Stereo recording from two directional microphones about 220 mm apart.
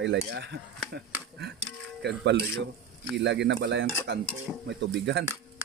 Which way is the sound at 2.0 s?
50° right (ahead or behind).